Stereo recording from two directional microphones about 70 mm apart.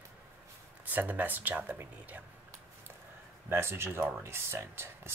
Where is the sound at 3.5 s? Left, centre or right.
Right.